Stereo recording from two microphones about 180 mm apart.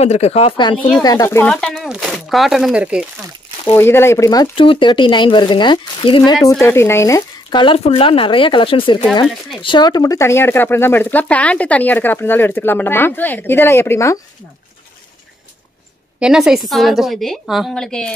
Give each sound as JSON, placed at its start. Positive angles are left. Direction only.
{"t": 0.0, "sound": "speech", "side_deg": 35}
{"t": 1.5, "sound": "a woman's voice", "side_deg": 5}
{"t": 3.6, "sound": "speech", "side_deg": 15}
{"t": 6.6, "sound": "speech", "side_deg": 15}
{"t": 16.2, "sound": "a woman's voice", "side_deg": -5}